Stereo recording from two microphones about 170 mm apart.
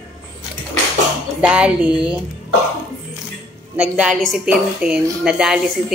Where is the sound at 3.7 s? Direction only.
5° right (ahead or behind).